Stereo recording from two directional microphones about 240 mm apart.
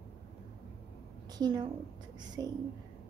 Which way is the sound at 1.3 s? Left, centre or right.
Centre.